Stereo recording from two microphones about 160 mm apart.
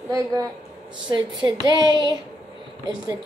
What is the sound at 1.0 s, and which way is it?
Speech, 25° right (ahead or behind).